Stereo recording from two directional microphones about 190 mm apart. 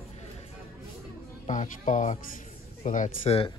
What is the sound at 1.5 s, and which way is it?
Speech, 40° left (ahead or behind).